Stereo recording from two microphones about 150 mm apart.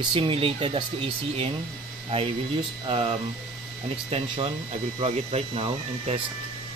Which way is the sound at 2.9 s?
40° right (ahead or behind).